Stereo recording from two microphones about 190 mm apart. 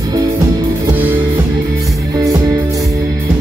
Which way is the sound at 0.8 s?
10° right (ahead or behind).